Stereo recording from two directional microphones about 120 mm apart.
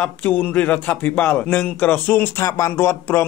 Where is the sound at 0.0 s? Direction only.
15° left (ahead or behind).